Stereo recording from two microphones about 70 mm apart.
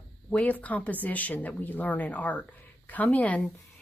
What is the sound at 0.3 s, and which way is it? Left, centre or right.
A woman's voice, left.